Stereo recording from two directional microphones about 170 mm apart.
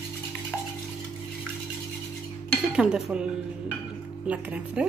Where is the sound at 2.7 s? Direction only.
5° right (ahead or behind).